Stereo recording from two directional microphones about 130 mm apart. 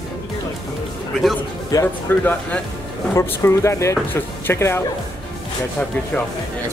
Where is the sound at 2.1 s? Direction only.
15° left (ahead or behind).